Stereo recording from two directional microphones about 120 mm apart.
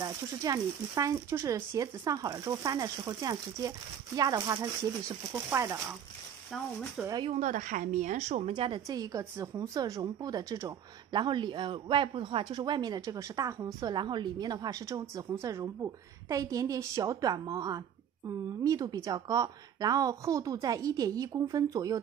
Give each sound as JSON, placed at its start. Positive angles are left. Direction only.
{"t": 0.0, "sound": "speech", "side_deg": -30}
{"t": 7.0, "sound": "speech", "side_deg": -5}
{"t": 7.3, "sound": "speech", "side_deg": -90}
{"t": 8.5, "sound": "a woman's voice", "side_deg": -45}
{"t": 8.8, "sound": "a woman's voice", "side_deg": -30}